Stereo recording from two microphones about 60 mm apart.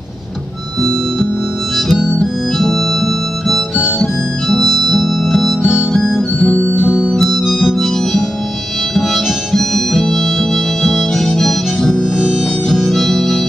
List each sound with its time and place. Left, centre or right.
1.9 s harmonica: centre
6.0 s music: centre
7.1 s music: centre
8.9 s harmonica: centre